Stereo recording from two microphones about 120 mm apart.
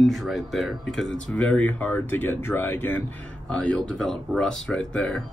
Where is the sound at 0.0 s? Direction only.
Centre (ahead or behind).